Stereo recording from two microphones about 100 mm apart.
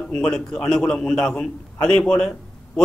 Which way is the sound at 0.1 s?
5° left (ahead or behind).